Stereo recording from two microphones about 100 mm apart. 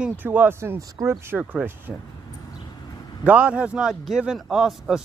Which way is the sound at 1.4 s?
15° right (ahead or behind).